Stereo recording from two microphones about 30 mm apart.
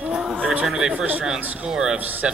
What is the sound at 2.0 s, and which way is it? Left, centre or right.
Speech, right.